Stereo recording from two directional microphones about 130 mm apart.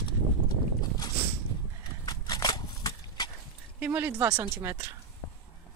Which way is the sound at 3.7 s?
15° right (ahead or behind).